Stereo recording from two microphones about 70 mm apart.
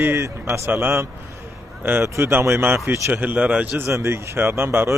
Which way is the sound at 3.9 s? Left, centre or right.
Right.